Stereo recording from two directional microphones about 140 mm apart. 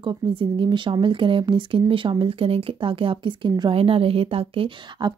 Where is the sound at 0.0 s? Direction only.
35° right (ahead or behind).